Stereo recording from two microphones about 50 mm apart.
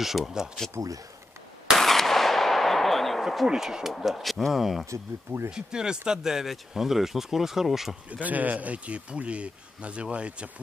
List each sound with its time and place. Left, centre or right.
0.0 s speech: centre
0.8 s speech: right
1.8 s gunshot: centre
3.4 s speech: centre
7.9 s speech: right